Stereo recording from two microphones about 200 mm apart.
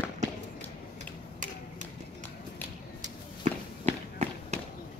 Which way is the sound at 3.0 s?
35° right (ahead or behind).